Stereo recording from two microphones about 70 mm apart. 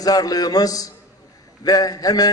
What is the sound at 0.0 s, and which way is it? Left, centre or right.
A man's voice, left.